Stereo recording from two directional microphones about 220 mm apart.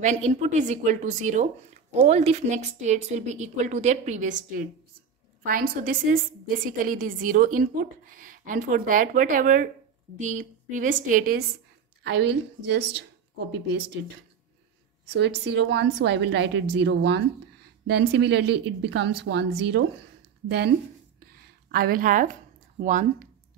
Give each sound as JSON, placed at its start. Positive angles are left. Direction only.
{"t": 0.0, "sound": "a woman's voice", "side_deg": -30}
{"t": 12.0, "sound": "a woman's voice", "side_deg": -50}
{"t": 15.0, "sound": "a woman's voice", "side_deg": -50}
{"t": 21.2, "sound": "a sound", "side_deg": -45}